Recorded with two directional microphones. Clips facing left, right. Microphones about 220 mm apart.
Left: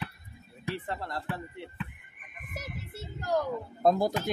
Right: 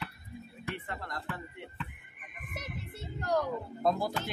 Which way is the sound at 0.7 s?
30° left (ahead or behind).